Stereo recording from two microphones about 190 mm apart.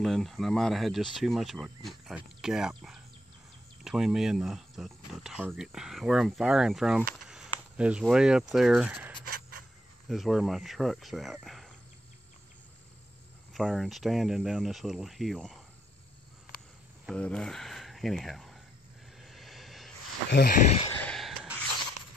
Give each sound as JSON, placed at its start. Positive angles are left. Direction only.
{"t": 0.0, "sound": "speech", "side_deg": 0}
{"t": 13.5, "sound": "speech", "side_deg": 0}
{"t": 17.1, "sound": "speech", "side_deg": 5}
{"t": 19.2, "sound": "vehicle", "side_deg": 0}
{"t": 20.2, "sound": "speech", "side_deg": 60}
{"t": 21.0, "sound": "a sound", "side_deg": 0}